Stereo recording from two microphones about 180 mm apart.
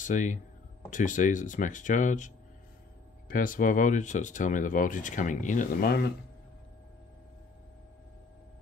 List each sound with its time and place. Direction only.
0.0 s speech: 45° left (ahead or behind)